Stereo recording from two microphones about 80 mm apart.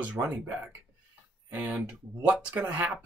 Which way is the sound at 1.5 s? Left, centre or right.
Centre.